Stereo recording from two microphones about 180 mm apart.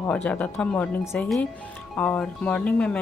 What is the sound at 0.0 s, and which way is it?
Speech, 10° left (ahead or behind).